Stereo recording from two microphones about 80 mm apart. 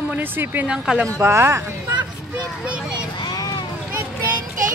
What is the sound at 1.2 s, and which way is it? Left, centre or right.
Speech, right.